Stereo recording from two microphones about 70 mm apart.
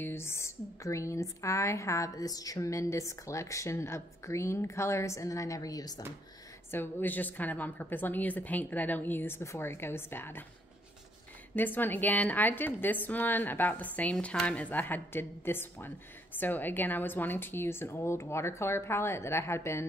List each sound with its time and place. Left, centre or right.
0.0 s speech: left
6.7 s a woman's voice: left
11.5 s a woman's voice: left